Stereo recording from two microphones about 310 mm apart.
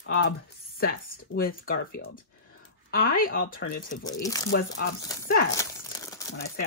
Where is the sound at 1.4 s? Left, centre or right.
Left.